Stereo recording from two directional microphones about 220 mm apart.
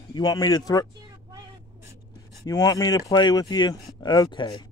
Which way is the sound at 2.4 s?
15° left (ahead or behind).